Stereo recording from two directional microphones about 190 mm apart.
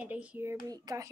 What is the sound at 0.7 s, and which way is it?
Speech, 20° right (ahead or behind).